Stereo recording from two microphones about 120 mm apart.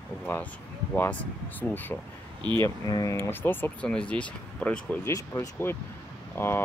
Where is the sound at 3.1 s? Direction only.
20° left (ahead or behind).